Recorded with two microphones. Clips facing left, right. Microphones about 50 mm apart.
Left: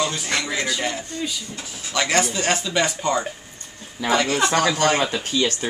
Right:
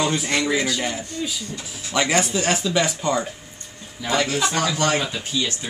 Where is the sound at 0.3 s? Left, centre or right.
Centre.